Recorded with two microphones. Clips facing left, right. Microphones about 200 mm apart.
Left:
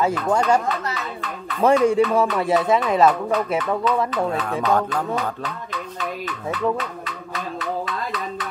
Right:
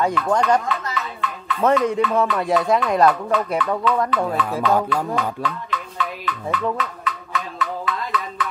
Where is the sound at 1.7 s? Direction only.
30° left (ahead or behind).